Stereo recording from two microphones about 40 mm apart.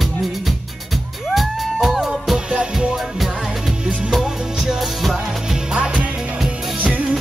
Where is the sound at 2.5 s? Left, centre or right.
Centre.